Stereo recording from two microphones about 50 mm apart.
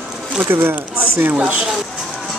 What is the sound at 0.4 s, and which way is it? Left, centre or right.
Speech, right.